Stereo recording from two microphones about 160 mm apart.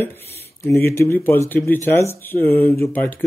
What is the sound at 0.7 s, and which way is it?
Speech, 15° left (ahead or behind).